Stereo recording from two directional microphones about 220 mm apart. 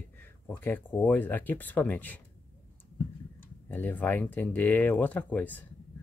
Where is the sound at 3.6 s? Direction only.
10° left (ahead or behind).